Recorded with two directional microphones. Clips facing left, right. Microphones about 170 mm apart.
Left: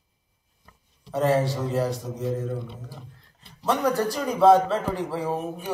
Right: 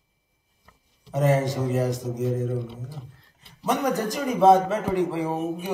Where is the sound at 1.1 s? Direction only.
15° right (ahead or behind).